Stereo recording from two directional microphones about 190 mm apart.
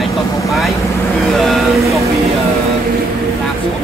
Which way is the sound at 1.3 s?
Centre (ahead or behind).